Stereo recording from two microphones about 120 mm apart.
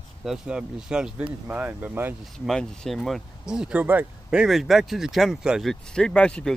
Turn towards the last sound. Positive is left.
turn(degrees=10)  # may be behind; listen again after turning